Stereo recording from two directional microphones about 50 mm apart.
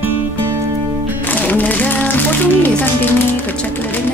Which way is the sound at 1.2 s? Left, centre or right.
Left.